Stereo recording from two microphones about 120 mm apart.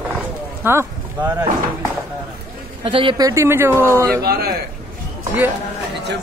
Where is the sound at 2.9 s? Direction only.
45° right (ahead or behind).